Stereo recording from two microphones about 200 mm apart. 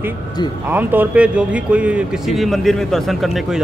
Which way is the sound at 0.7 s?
10° right (ahead or behind).